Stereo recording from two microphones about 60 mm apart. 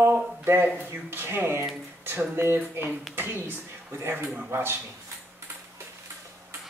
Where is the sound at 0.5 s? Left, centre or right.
Right.